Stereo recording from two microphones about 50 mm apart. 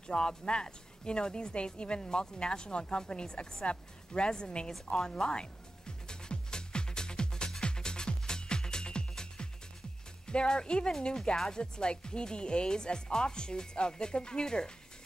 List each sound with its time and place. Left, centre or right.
0.1 s a woman's voice: centre
4.9 s music: centre
10.2 s a woman's voice: centre